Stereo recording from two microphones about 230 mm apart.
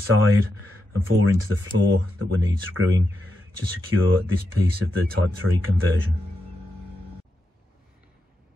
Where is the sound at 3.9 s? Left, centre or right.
Right.